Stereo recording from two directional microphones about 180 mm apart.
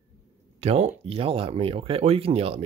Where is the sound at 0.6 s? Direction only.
35° right (ahead or behind).